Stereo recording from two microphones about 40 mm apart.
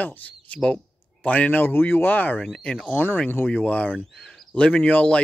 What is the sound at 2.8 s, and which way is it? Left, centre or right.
Speech, left.